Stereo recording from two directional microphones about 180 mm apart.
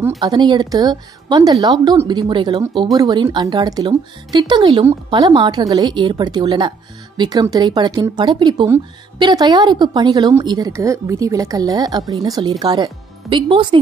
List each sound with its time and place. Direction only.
0.2 s a woman's voice: 25° right (ahead or behind)